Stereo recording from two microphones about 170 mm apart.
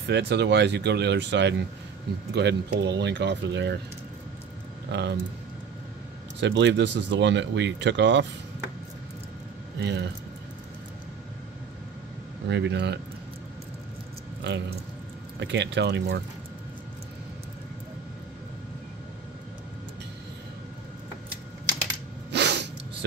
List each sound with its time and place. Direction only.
0.0 s speech: 85° right
4.9 s speech: 90° right
6.4 s speech: 90° right
9.8 s speech: 90° right
12.4 s speech: 90° right
14.4 s speech: 90° right
22.3 s snort: 85° right